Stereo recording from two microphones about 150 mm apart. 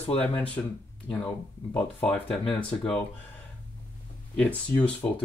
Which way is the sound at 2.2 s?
35° left (ahead or behind).